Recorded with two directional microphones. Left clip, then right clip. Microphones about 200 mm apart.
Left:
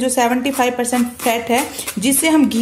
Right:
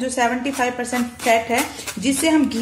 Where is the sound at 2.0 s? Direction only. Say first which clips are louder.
Left 3 dB; 40° left (ahead or behind).